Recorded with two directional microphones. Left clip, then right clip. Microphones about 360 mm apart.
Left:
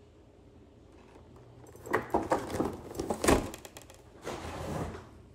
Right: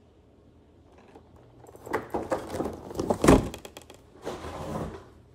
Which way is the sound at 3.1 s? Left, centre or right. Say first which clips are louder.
Right 7 dB; right.